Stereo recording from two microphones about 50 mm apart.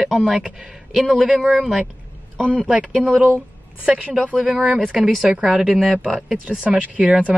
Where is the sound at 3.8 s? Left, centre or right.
Right.